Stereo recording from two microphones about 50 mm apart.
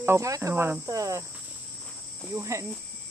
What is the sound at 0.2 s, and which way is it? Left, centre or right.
Speech, right.